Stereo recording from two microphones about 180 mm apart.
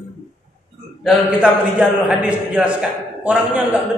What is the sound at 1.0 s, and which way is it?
A man's voice, 5° right (ahead or behind).